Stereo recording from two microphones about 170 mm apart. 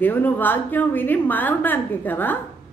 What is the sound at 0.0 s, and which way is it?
A woman's voice, 10° left (ahead or behind).